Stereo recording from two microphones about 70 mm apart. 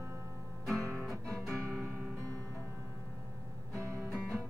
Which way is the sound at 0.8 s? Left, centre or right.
Right.